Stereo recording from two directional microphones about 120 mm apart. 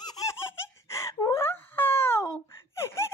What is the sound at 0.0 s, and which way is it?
Giggle, 30° left (ahead or behind).